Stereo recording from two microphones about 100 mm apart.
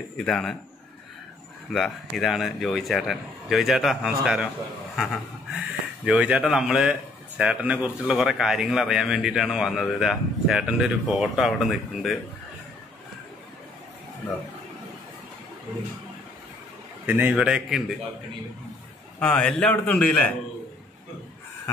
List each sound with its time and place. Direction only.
0.2 s speech: 5° left (ahead or behind)
1.7 s speech: centre (ahead or behind)
17.0 s a man's voice: 15° right (ahead or behind)
19.1 s a man's voice: 10° left (ahead or behind)